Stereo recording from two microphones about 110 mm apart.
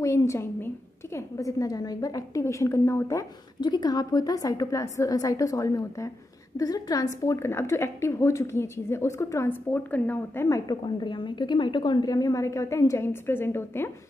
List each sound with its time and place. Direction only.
0.0 s a woman's voice: 25° left (ahead or behind)
3.6 s a woman's voice: 40° left (ahead or behind); by 10.6 s 20° left (ahead or behind)
10.7 s a woman's voice: 40° left (ahead or behind); by 13.9 s 20° left (ahead or behind)